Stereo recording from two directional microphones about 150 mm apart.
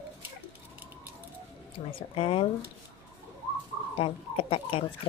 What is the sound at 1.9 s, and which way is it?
Speech, 40° left (ahead or behind).